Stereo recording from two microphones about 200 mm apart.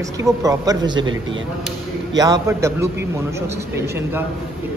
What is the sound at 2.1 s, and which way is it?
Speech, 15° right (ahead or behind).